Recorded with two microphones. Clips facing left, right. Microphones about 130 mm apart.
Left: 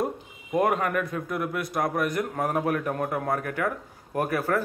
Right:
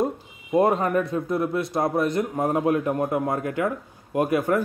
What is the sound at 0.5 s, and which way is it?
A man's voice, 30° right (ahead or behind).